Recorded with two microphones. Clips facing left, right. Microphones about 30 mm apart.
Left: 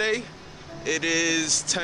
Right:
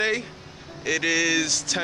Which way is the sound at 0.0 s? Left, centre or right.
Centre.